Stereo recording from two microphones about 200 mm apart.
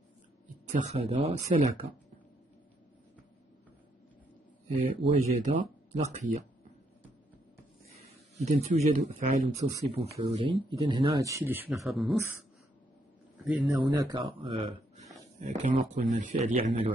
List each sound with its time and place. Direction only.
0.7 s speech: 35° right (ahead or behind)
5.1 s speech: 40° right (ahead or behind)
7.9 s speech: 35° right (ahead or behind)
10.3 s speech: 25° right (ahead or behind); by 12.2 s centre (ahead or behind)
13.4 s a man's voice: 5° right (ahead or behind)
13.7 s speech: 20° right (ahead or behind)